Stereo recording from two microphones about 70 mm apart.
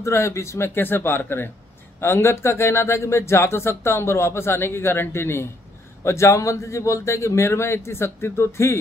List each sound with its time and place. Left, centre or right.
0.0 s a man's voice: left